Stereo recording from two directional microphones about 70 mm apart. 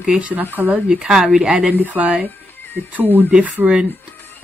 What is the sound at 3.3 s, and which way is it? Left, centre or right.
Speech, centre.